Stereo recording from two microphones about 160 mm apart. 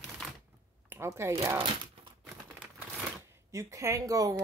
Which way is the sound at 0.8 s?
15° right (ahead or behind).